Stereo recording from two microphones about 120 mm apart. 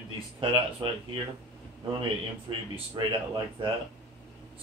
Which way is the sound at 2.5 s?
45° right (ahead or behind).